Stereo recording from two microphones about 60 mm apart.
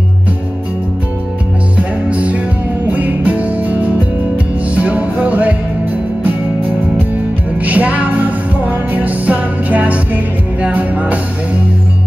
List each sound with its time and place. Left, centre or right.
1.8 s music: right
7.6 s music: right